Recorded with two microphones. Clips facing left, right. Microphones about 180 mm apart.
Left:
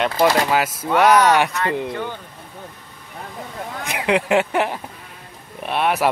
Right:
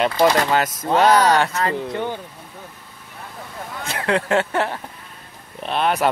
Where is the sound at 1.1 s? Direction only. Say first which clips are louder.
Left 1 dB; 15° left (ahead or behind).